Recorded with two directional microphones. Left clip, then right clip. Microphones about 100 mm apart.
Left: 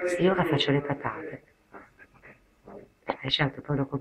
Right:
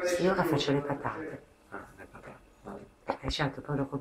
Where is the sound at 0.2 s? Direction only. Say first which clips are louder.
Left 3 dB; 10° right (ahead or behind).